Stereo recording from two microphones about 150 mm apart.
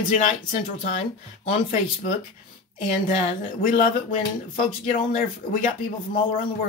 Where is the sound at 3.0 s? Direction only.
60° left (ahead or behind).